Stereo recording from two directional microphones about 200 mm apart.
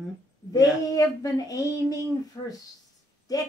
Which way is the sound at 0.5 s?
20° left (ahead or behind).